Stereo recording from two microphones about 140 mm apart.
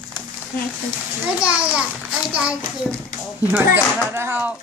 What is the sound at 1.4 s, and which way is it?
A child's voice, 10° right (ahead or behind).